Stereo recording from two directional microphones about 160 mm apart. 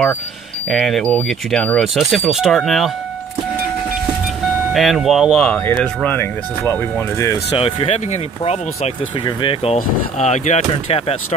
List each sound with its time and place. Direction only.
0.7 s speech: centre (ahead or behind)
4.7 s speech: centre (ahead or behind)
6.0 s speech: 15° left (ahead or behind)
7.5 s speech: 35° left (ahead or behind)
9.8 s speech: 45° left (ahead or behind)